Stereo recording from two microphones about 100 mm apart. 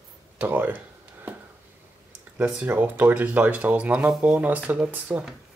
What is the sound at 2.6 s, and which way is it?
Speech, 20° right (ahead or behind).